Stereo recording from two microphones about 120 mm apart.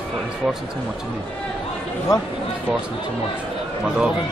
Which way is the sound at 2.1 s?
30° left (ahead or behind).